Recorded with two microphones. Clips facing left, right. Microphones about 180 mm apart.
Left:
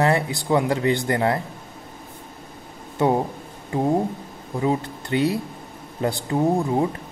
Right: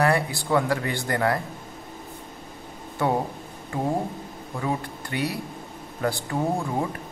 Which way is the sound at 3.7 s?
20° left (ahead or behind).